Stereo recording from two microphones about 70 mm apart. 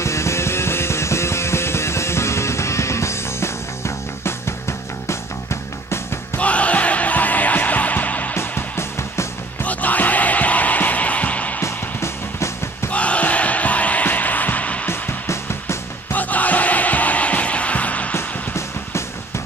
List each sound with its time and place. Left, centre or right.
0.0 s music: left
6.3 s music: centre
8.4 s music: left
9.6 s music: left
11.6 s music: left
12.9 s music: centre
14.9 s music: left
16.1 s music: left
18.1 s music: left